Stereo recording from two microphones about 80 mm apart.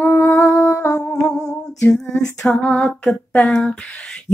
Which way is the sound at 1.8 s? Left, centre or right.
Centre.